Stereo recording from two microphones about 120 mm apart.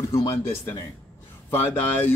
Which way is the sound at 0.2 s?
20° left (ahead or behind).